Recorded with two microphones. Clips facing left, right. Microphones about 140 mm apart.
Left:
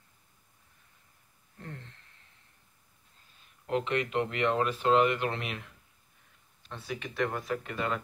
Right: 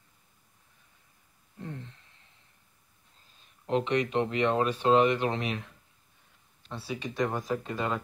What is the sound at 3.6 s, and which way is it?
Speech, 20° right (ahead or behind).